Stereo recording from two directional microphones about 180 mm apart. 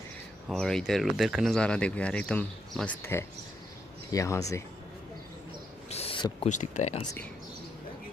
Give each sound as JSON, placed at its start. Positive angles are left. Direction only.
{"t": 0.5, "sound": "speech", "side_deg": 5}
{"t": 5.9, "sound": "owl", "side_deg": 35}
{"t": 6.5, "sound": "speech", "side_deg": 40}